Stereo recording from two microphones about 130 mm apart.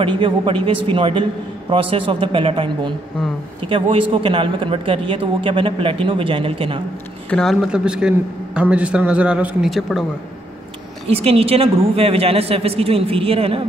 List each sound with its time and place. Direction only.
0.0 s a woman's voice: 40° right (ahead or behind)
7.2 s speech: 5° left (ahead or behind)
7.6 s a man's voice: 5° right (ahead or behind)
11.1 s a woman's voice: 50° right (ahead or behind)